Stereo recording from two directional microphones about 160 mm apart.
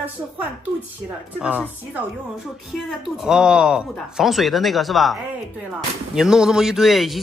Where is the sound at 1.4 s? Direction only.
5° right (ahead or behind).